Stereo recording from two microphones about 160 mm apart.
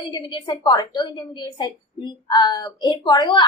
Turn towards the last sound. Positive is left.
turn(degrees=25)  # may be behind; listen again after turning